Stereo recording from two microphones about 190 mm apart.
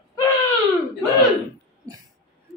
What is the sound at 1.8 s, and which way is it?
Speech, 20° right (ahead or behind).